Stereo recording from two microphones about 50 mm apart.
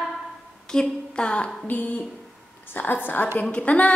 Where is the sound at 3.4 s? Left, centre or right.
Left.